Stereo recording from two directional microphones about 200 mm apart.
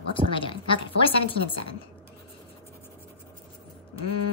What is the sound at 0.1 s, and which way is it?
A woman's voice, 25° left (ahead or behind).